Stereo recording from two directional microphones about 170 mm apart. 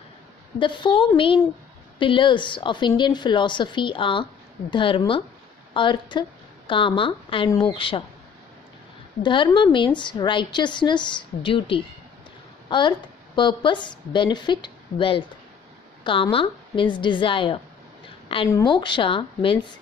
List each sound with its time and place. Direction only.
0.6 s a woman's voice: 30° left (ahead or behind)
9.2 s a woman's voice: 30° left (ahead or behind)